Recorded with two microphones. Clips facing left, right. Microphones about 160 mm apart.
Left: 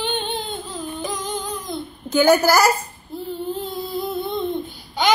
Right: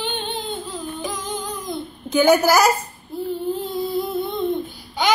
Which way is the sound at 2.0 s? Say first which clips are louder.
Even; centre (ahead or behind).